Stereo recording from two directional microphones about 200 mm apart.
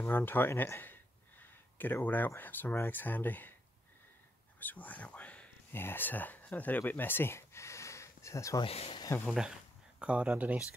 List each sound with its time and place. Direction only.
0.0 s speech: 10° left (ahead or behind)
4.6 s speech: 10° left (ahead or behind)
8.6 s speech: 30° left (ahead or behind)
9.0 s speech: 15° left (ahead or behind)
9.9 s speech: 5° right (ahead or behind)